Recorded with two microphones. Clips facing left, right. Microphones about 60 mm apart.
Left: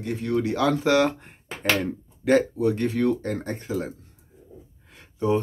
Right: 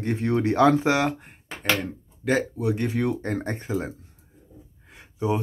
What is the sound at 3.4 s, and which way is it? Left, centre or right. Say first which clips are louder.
Speech: even; right.